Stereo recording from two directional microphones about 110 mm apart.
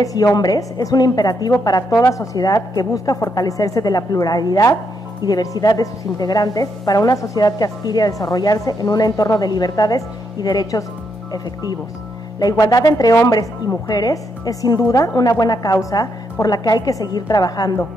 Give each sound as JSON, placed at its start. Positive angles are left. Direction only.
{"t": 0.0, "sound": "a woman's voice", "side_deg": 35}
{"t": 12.4, "sound": "a woman's voice", "side_deg": 35}